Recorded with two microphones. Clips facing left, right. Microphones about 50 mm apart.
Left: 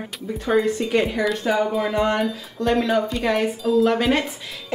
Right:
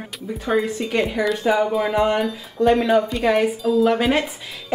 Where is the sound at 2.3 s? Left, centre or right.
Centre.